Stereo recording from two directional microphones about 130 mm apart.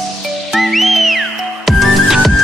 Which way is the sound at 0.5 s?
Centre (ahead or behind).